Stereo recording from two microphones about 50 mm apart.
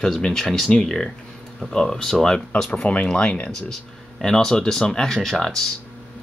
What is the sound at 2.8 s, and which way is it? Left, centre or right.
Speech, left.